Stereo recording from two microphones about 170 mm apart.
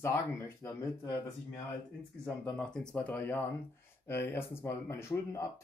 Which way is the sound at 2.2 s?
5° left (ahead or behind).